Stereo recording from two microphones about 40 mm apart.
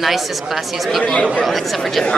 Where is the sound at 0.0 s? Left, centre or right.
Centre.